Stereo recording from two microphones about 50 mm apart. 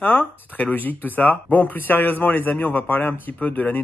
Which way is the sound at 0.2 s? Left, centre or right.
Left.